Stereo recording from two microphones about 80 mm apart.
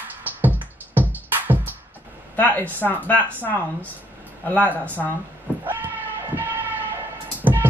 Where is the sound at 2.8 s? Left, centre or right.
Left.